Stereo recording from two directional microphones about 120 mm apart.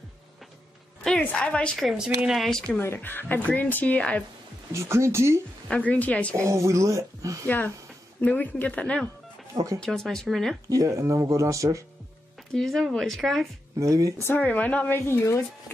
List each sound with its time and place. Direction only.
1.0 s a woman's voice: 5° left (ahead or behind)
2.8 s speech: 20° left (ahead or behind)
4.7 s speech: 20° right (ahead or behind)
5.7 s speech: 10° left (ahead or behind)
6.4 s speech: 25° right (ahead or behind)
7.4 s a woman's voice: 15° left (ahead or behind)
10.7 s speech: 25° right (ahead or behind)
12.5 s a woman's voice: centre (ahead or behind)
13.7 s speech: 25° right (ahead or behind)
14.2 s speech: 15° left (ahead or behind)